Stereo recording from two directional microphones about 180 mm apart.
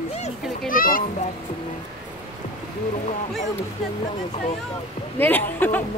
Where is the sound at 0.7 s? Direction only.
50° left (ahead or behind).